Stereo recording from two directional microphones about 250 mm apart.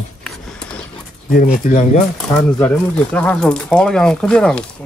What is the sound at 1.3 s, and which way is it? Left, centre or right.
Speech, left.